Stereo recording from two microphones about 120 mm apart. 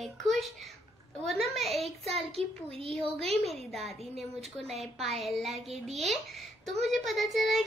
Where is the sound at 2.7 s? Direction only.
55° right (ahead or behind).